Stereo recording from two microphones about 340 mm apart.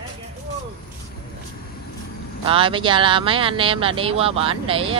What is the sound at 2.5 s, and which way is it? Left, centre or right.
Speech, centre.